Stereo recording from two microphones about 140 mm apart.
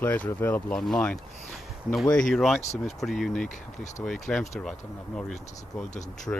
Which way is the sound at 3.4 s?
60° left (ahead or behind).